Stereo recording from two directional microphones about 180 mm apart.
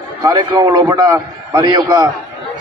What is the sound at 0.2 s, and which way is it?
A man's voice, 25° right (ahead or behind).